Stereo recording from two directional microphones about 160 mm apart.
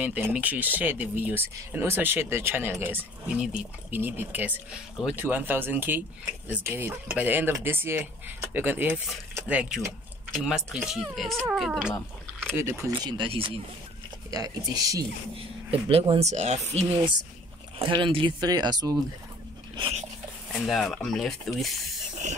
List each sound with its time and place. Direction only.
0.0 s speech: 10° right (ahead or behind)
12.4 s speech: 15° right (ahead or behind); by 13.6 s 35° right (ahead or behind)
14.3 s speech: 25° right (ahead or behind)
15.9 s speech: 35° right (ahead or behind)
17.7 s speech: 30° right (ahead or behind)
20.5 s speech: centre (ahead or behind)